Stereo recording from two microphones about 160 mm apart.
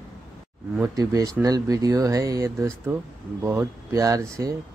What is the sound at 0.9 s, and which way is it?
Speech, 20° right (ahead or behind).